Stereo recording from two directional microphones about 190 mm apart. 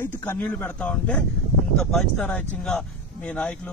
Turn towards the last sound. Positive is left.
turn(degrees=5)  # may be behind; listen again after turning